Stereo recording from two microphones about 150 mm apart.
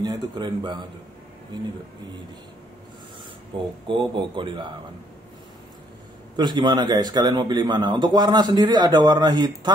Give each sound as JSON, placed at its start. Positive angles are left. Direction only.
{"t": 0.0, "sound": "speech", "side_deg": -30}
{"t": 3.8, "sound": "speech", "side_deg": -35}
{"t": 6.3, "sound": "speech", "side_deg": -30}